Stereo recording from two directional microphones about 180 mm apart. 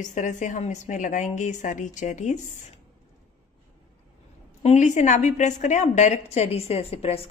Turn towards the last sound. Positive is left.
turn(degrees=35)  # may be behind; listen again after turning